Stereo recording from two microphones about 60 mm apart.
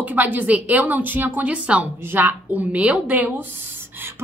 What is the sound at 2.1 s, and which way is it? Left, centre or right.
Speech, right.